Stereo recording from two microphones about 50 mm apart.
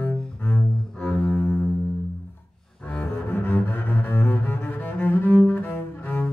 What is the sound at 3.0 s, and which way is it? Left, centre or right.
Cello, left.